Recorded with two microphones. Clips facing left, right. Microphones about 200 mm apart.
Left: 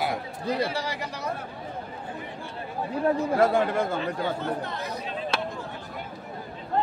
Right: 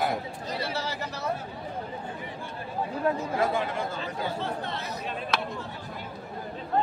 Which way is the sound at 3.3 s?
50° left (ahead or behind).